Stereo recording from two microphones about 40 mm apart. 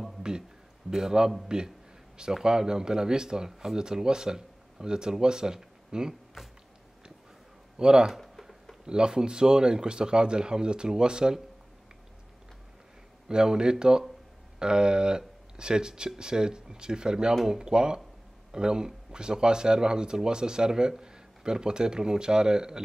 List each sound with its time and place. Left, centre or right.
0.8 s speech: centre
2.4 s speech: centre
6.4 s a sound: centre
7.8 s speech: right
8.1 s a sound: centre
8.8 s speech: right
13.3 s speech: centre